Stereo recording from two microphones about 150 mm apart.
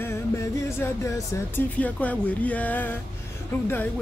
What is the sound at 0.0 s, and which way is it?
Music, 15° left (ahead or behind).